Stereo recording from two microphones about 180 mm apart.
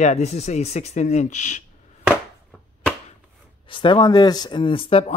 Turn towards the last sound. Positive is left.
turn(degrees=30)  # may be behind; listen again after turning